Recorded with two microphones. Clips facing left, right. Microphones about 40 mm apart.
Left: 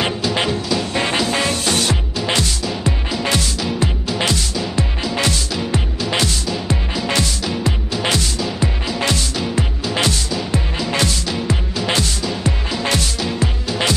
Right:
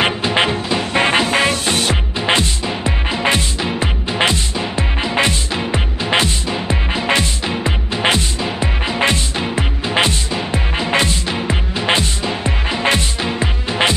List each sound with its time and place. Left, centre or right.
0.0 s music: right